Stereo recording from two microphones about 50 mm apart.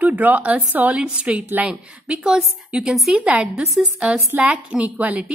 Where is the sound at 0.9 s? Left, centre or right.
Right.